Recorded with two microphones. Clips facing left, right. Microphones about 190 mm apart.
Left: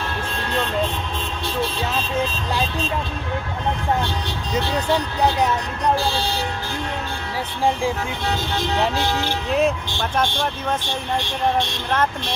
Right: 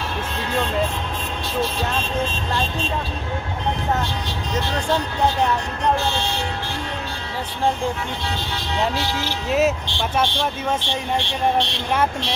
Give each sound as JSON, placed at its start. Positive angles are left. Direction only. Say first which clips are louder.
{"t": 5.9, "sound": "speech", "louder": "left 1 dB", "side_deg": 35}
{"t": 8.9, "sound": "a woman's voice", "louder": "left 3 dB", "side_deg": 55}
{"t": 9.5, "sound": "speech", "louder": "right 1 dB", "side_deg": -5}
{"t": 10.8, "sound": "a woman's voice", "louder": "right 1 dB", "side_deg": 45}